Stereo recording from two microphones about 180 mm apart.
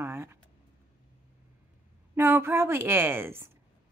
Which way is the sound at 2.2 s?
15° right (ahead or behind).